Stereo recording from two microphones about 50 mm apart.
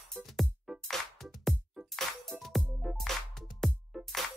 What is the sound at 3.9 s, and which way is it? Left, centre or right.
Music, centre.